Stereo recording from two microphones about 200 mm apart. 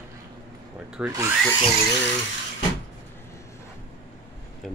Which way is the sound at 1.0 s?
10° right (ahead or behind).